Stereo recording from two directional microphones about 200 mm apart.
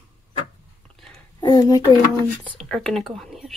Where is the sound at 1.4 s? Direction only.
20° left (ahead or behind).